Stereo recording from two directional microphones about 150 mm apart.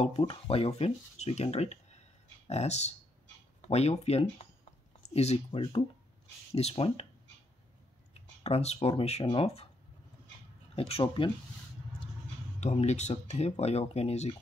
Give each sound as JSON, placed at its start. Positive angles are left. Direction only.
{"t": 0.0, "sound": "speech", "side_deg": 40}
{"t": 8.1, "sound": "speech", "side_deg": 45}
{"t": 10.8, "sound": "speech", "side_deg": 40}
{"t": 12.5, "sound": "speech", "side_deg": 50}